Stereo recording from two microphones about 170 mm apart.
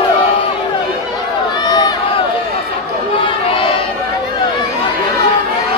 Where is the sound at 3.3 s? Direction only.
30° left (ahead or behind).